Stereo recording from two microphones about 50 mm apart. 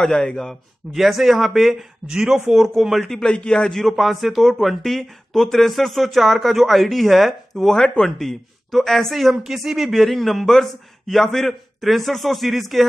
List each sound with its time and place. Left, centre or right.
0.0 s a man's voice: centre
0.9 s a man's voice: centre
2.0 s a man's voice: centre
3.2 s a man's voice: centre